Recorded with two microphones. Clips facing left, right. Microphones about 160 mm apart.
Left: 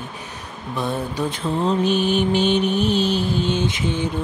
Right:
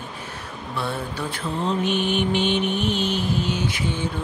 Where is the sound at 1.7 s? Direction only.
35° left (ahead or behind); by 4.1 s 20° left (ahead or behind).